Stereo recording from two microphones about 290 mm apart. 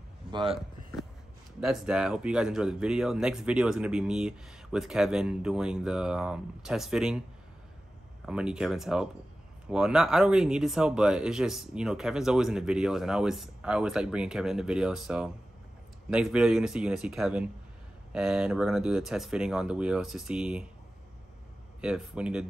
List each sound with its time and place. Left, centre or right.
0.3 s speech: centre
1.6 s speech: centre
8.3 s speech: centre
21.8 s speech: centre